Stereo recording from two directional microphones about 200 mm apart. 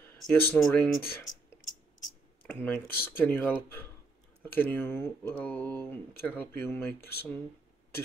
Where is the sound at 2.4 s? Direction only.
10° left (ahead or behind).